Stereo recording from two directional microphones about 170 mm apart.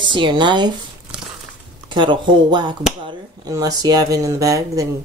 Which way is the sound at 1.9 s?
25° right (ahead or behind).